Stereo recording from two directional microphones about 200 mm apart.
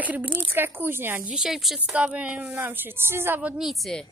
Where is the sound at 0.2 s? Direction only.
25° right (ahead or behind).